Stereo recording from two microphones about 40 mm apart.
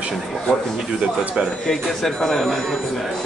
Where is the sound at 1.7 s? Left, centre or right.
Centre.